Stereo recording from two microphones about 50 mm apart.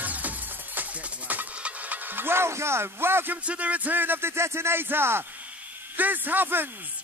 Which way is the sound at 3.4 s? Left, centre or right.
Right.